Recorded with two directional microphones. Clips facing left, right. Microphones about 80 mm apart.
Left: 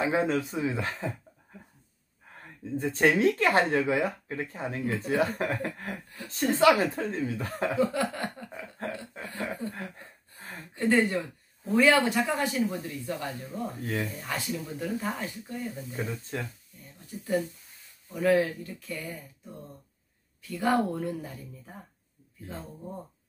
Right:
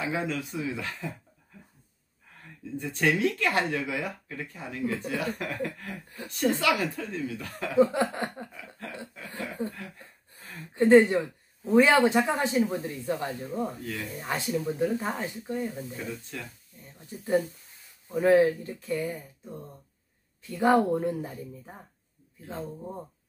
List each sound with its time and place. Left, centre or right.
0.0 s speech: left
2.4 s speech: left
7.7 s speech: right
8.5 s speech: left
9.8 s a sound: left
10.7 s speech: right
16.0 s speech: left
16.7 s a sound: centre
18.0 s speech: right
20.4 s speech: right